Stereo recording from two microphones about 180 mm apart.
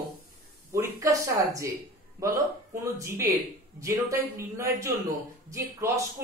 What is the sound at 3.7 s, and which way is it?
A man's voice, 15° right (ahead or behind).